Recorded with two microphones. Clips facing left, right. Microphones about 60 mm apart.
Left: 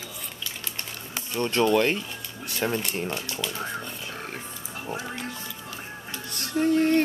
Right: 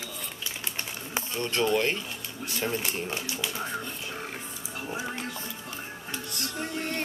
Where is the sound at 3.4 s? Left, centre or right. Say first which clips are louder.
Left 1 dB; centre.